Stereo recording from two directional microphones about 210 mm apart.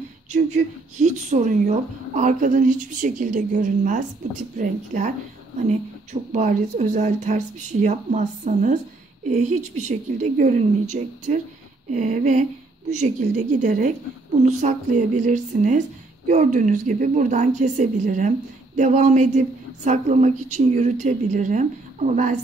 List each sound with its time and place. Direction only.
0.3 s speech: 35° right (ahead or behind)
6.3 s speech: 35° right (ahead or behind)